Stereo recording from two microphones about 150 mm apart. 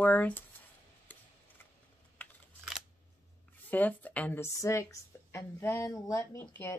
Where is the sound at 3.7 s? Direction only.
10° left (ahead or behind).